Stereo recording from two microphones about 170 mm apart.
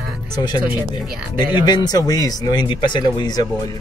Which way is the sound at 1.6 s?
25° left (ahead or behind).